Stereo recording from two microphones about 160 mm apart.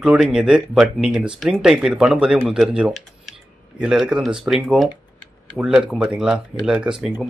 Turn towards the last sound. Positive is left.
turn(degrees=-5)  # may be behind; listen again after turning